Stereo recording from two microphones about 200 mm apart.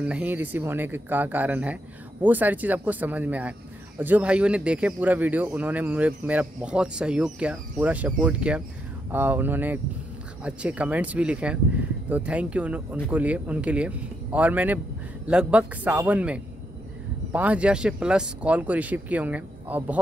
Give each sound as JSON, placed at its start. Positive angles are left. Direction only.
{"t": 0.0, "sound": "speech", "side_deg": -5}